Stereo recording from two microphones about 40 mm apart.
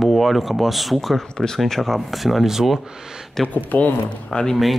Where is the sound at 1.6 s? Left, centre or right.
Centre.